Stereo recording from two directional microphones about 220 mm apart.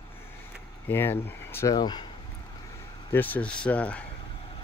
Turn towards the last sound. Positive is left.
turn(degrees=5)  # may be behind; listen again after turning